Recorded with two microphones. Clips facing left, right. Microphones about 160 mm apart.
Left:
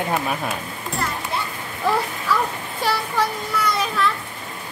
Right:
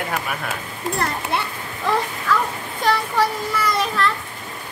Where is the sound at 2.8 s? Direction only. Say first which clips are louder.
Right 3 dB; centre (ahead or behind).